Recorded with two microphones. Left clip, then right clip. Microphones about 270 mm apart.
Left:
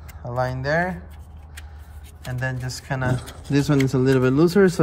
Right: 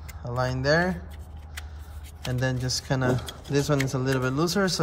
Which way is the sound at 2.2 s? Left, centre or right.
Centre.